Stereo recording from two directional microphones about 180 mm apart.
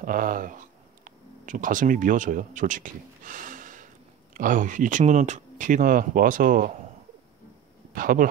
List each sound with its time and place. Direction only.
0.0 s speech: 50° right (ahead or behind)
7.9 s speech: 50° right (ahead or behind)